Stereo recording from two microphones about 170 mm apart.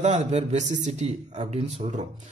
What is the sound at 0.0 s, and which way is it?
A man's voice, 40° right (ahead or behind).